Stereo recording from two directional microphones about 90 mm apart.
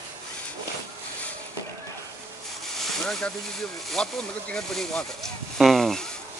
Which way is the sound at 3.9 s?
10° left (ahead or behind).